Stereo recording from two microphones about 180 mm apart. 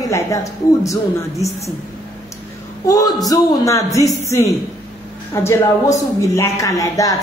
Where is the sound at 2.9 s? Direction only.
20° left (ahead or behind).